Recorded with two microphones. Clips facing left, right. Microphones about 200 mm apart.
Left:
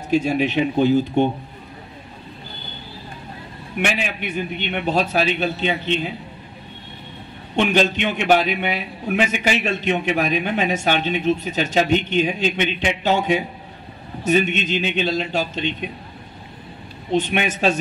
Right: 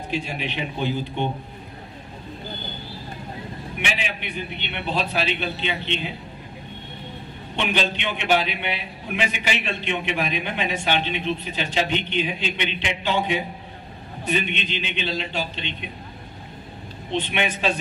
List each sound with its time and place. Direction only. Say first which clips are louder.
0.1 s a man's voice: left 11 dB; 45° left (ahead or behind)
3.8 s a man's voice: left 7 dB; 45° left (ahead or behind)
7.5 s a man's voice: left 7 dB; 45° left (ahead or behind)
17.1 s a man's voice: left 5 dB; 45° left (ahead or behind)